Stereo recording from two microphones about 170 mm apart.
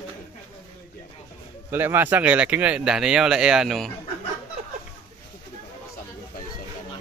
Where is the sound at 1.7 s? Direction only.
10° right (ahead or behind).